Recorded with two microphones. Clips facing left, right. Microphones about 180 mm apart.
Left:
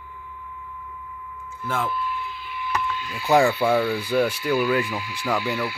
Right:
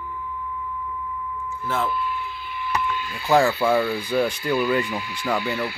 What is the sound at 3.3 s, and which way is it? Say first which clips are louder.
Speech: even; 15° left (ahead or behind).